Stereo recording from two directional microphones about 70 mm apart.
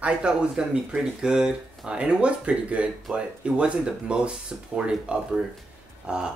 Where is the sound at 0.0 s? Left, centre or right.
Centre.